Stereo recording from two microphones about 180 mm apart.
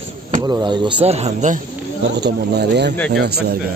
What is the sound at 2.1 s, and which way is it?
Speech, 65° right (ahead or behind).